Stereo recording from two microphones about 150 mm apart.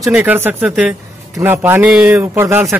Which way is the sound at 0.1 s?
10° right (ahead or behind).